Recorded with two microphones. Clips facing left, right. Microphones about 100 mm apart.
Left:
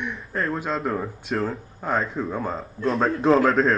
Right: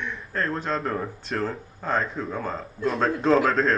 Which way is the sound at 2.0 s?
Centre (ahead or behind).